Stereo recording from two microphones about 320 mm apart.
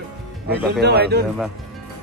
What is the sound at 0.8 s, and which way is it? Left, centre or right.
Speech, right.